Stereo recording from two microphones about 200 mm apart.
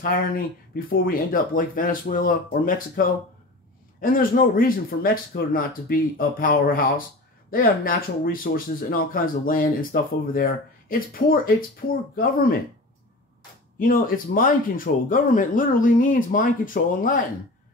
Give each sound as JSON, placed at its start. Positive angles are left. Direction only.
{"t": 0.0, "sound": "speech", "side_deg": 45}
{"t": 13.7, "sound": "speech", "side_deg": 45}